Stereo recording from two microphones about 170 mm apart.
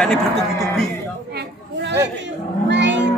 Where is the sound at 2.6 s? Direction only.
90° right.